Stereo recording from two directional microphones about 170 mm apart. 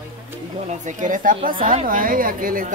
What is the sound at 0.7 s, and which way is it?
A woman's voice, 45° right (ahead or behind).